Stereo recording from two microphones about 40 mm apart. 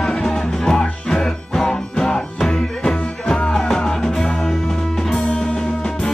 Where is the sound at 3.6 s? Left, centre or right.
Centre.